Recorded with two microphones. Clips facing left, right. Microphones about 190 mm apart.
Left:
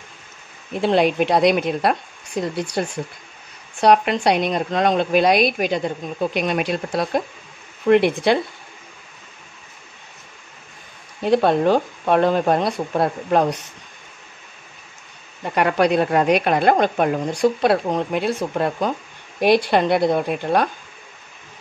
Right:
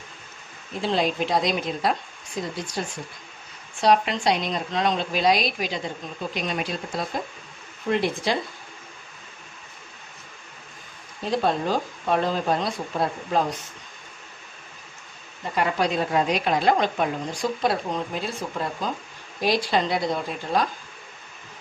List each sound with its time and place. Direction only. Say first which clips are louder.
0.7 s a woman's voice: left 7 dB; 60° left (ahead or behind)
3.8 s a woman's voice: left 5 dB; 60° left (ahead or behind)
11.2 s a woman's voice: left 8 dB; 65° left (ahead or behind)
15.4 s a woman's voice: left 6 dB; 65° left (ahead or behind)